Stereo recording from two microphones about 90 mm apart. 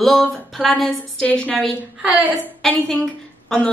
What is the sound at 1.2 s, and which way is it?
Speech, 15° left (ahead or behind).